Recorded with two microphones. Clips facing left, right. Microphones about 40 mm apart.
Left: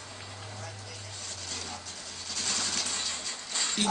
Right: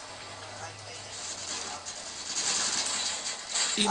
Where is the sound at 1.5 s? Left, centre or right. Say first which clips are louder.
Right 1 dB; centre.